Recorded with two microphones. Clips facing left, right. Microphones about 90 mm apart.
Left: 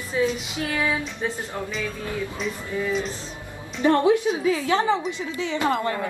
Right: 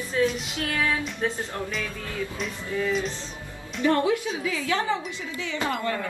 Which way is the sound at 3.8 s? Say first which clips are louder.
Left 4 dB; 30° left (ahead or behind).